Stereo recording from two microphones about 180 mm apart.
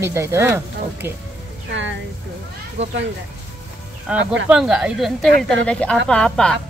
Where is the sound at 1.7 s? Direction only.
90° right.